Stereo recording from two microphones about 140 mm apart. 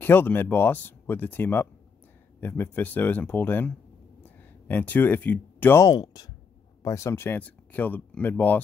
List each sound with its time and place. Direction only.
0.0 s speech: 15° left (ahead or behind)
5.9 s speech: 30° left (ahead or behind); by 8.5 s 10° left (ahead or behind)